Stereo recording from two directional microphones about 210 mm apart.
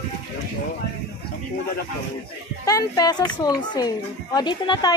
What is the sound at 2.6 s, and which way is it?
A woman's voice, 15° left (ahead or behind).